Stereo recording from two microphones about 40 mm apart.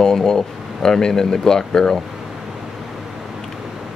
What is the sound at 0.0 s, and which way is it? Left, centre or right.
Speech, centre.